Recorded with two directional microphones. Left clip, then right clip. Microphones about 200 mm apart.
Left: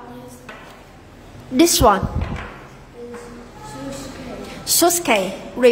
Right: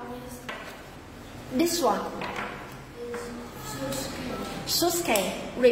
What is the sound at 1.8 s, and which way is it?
Speech, 50° left (ahead or behind).